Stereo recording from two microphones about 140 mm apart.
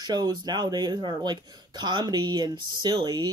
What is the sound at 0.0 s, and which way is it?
Speech, 30° right (ahead or behind).